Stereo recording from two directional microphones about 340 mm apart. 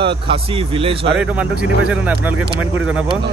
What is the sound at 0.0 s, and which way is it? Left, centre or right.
Speech, centre.